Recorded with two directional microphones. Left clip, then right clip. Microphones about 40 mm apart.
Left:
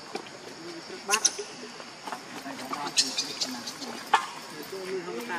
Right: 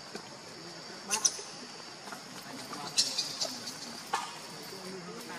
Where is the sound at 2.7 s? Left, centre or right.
Left.